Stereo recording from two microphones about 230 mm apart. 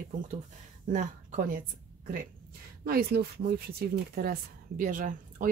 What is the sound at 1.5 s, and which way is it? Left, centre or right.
A woman's voice, right.